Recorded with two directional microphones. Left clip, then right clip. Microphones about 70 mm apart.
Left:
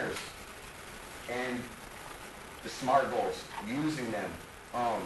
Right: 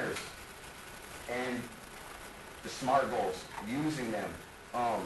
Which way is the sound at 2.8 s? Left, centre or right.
Centre.